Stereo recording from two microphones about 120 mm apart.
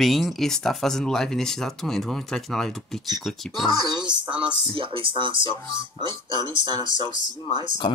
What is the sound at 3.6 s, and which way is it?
Speech, 40° right (ahead or behind).